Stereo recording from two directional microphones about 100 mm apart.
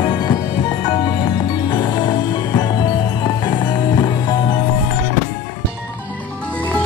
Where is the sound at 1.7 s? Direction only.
45° left (ahead or behind).